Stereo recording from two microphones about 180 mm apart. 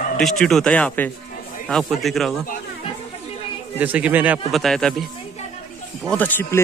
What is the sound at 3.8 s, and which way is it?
A man's voice, 10° right (ahead or behind).